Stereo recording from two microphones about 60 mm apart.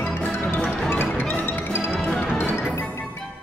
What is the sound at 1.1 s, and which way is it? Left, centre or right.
Music, left.